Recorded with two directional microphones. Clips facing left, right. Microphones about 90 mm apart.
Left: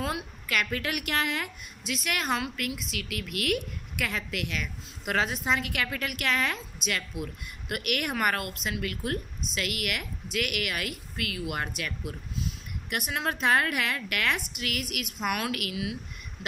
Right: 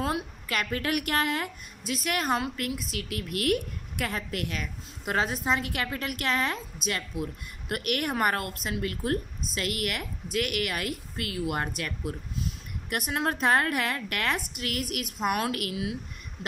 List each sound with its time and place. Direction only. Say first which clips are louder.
0.0 s a woman's voice: right 3 dB; 35° right (ahead or behind)